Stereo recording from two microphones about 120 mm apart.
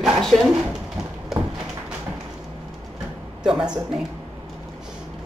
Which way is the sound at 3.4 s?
5° right (ahead or behind).